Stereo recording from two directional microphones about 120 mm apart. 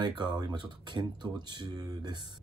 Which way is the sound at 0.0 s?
40° right (ahead or behind).